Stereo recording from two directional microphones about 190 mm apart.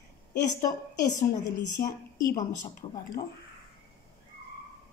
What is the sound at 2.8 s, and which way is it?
Speech, 30° left (ahead or behind).